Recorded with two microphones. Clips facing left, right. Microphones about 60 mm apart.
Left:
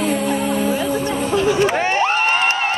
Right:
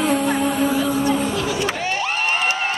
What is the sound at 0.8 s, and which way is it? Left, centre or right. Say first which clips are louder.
Crowd: right 1 dB; left.